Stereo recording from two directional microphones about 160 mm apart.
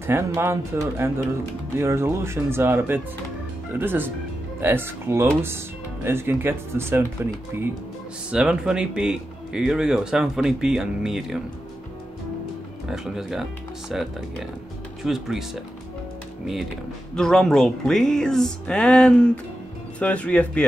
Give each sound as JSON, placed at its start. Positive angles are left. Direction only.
{"t": 0.0, "sound": "speech", "side_deg": -15}
{"t": 8.3, "sound": "speech", "side_deg": -5}
{"t": 12.8, "sound": "speech", "side_deg": -5}
{"t": 15.0, "sound": "speech", "side_deg": 0}
{"t": 17.1, "sound": "speech", "side_deg": 5}